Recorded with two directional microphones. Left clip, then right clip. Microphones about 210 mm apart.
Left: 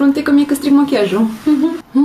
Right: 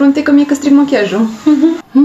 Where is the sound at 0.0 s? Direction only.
15° left (ahead or behind).